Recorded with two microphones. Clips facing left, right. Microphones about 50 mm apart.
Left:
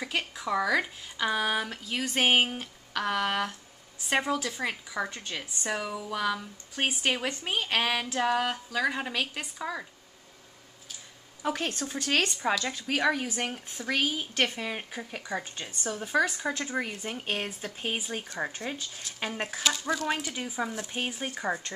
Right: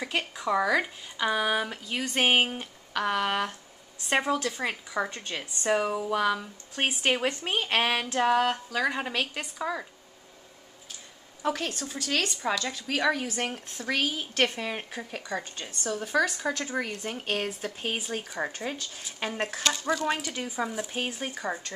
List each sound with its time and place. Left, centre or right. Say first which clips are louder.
0.0 s a woman's voice: right 2 dB; centre
2.6 s a sound: right 2 dB; centre
4.0 s a woman's voice: right 2 dB; centre
5.8 s a sound: right 6 dB; right
6.0 s a woman's voice: right 4 dB; centre
11.4 s speech: right 1 dB; centre
11.9 s speech: left 2 dB; left
12.4 s a woman's voice: left 1 dB; centre